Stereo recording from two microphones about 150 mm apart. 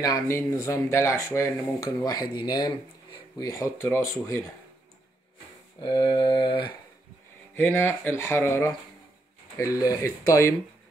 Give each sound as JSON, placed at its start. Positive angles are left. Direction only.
{"t": 0.0, "sound": "speech", "side_deg": 20}
{"t": 5.8, "sound": "a sound", "side_deg": 30}
{"t": 7.5, "sound": "speech", "side_deg": 15}